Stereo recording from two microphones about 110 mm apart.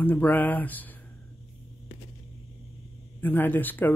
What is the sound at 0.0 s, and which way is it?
Speech, 15° left (ahead or behind).